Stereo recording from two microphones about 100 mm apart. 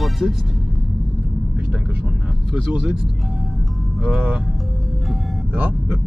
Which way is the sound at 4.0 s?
10° right (ahead or behind).